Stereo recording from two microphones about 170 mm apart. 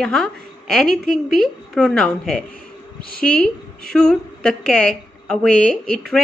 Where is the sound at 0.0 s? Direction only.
Centre (ahead or behind).